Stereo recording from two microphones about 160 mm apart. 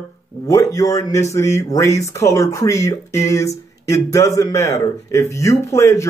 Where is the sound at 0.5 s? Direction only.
20° left (ahead or behind).